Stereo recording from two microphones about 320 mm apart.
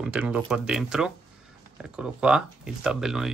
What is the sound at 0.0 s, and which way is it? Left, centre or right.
Speech, centre.